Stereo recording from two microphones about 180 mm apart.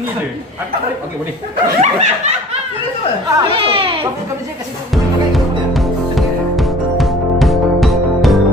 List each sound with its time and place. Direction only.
1.8 s snicker: 40° right (ahead or behind)
3.3 s speech: 30° right (ahead or behind)
4.9 s music: centre (ahead or behind)